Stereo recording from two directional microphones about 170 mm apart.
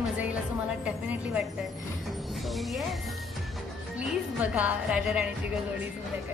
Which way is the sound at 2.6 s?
Centre (ahead or behind).